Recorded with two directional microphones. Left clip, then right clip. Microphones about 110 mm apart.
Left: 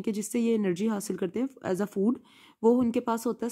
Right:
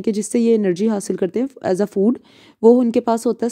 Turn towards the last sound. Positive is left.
turn(degrees=-40)  # may be behind; listen again after turning